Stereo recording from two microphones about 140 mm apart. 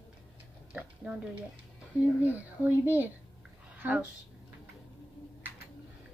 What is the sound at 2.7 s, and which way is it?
A woman's voice, 15° right (ahead or behind).